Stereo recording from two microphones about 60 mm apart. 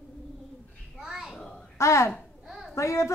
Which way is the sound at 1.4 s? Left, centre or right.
Centre.